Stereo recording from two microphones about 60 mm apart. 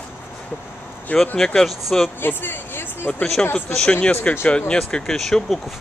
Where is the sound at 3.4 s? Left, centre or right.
Centre.